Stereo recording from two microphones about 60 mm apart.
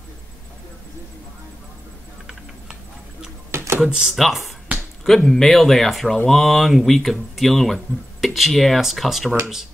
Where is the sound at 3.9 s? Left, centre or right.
Centre.